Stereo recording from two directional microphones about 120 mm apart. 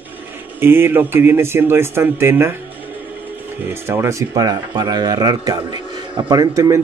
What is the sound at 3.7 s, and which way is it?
Speech, 20° right (ahead or behind).